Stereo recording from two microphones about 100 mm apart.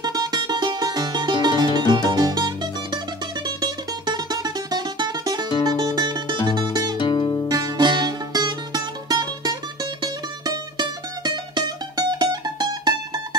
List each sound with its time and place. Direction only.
0.0 s music: 45° right (ahead or behind)
7.0 s music: 45° left (ahead or behind)
7.4 s music: 40° right (ahead or behind)